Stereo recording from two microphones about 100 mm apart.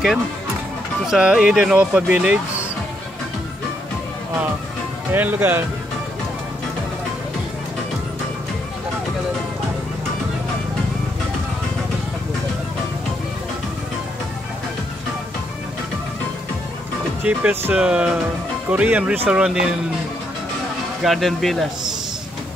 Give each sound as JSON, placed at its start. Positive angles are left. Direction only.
{"t": 1.0, "sound": "speech", "side_deg": -5}
{"t": 5.1, "sound": "speech", "side_deg": -20}
{"t": 17.2, "sound": "speech", "side_deg": -15}
{"t": 21.0, "sound": "speech", "side_deg": 0}